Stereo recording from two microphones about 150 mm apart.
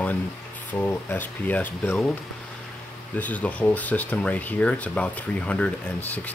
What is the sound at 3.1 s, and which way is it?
Speech, 10° left (ahead or behind).